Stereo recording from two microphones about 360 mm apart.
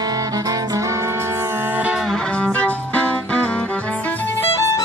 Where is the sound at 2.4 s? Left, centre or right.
Centre.